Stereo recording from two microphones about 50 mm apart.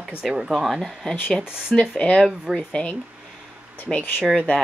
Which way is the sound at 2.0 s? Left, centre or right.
Centre.